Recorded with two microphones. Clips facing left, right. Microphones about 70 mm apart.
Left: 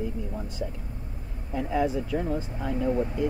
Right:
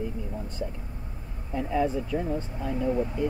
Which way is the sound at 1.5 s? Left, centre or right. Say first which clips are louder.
Even; centre.